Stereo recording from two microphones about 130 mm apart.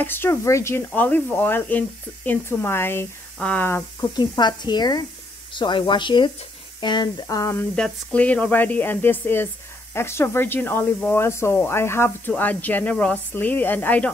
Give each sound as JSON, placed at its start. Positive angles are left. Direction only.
{"t": 0.0, "sound": "speech", "side_deg": 15}
{"t": 4.1, "sound": "speech", "side_deg": 35}
{"t": 6.8, "sound": "a sound", "side_deg": 35}
{"t": 7.7, "sound": "speech", "side_deg": 10}